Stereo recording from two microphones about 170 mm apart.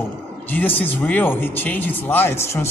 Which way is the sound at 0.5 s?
10° left (ahead or behind).